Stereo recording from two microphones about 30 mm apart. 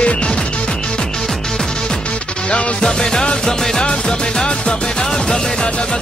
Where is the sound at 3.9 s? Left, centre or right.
Left.